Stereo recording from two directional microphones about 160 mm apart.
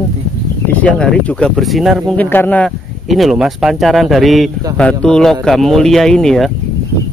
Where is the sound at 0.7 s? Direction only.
10° left (ahead or behind).